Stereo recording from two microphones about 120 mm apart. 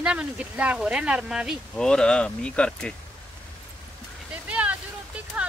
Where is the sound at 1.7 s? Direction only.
5° left (ahead or behind).